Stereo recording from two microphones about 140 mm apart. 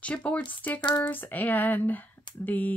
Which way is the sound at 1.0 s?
15° left (ahead or behind).